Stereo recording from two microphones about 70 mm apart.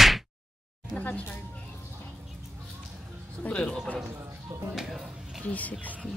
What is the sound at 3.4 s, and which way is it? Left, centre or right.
Speech, centre.